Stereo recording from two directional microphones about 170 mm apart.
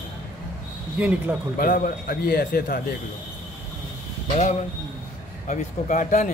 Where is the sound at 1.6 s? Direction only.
60° left (ahead or behind).